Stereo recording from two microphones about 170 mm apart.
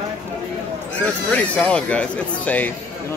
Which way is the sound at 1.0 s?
10° left (ahead or behind).